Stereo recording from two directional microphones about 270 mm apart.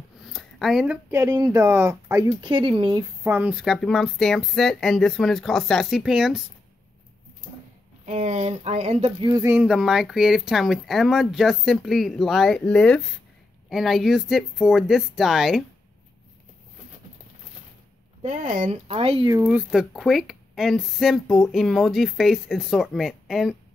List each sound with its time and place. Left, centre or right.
0.2 s speech: centre
8.0 s speech: right; by 15.6 s centre
18.2 s speech: right
19.4 s speech: centre